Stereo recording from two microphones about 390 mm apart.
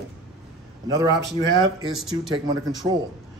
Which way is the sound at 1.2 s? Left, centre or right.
Right.